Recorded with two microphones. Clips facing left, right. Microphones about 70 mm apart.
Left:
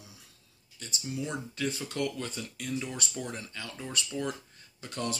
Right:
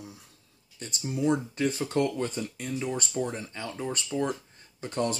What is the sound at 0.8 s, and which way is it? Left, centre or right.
Speech, right.